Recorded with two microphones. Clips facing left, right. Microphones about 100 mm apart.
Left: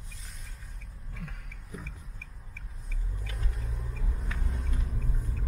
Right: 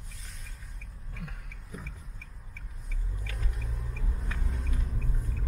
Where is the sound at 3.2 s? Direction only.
Centre (ahead or behind).